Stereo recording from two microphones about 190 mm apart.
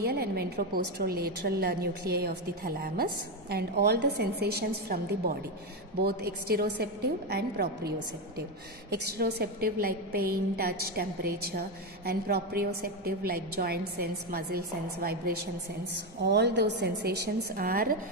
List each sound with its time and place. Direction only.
0.0 s a woman's voice: 55° right (ahead or behind)
8.9 s a woman's voice: 60° right (ahead or behind)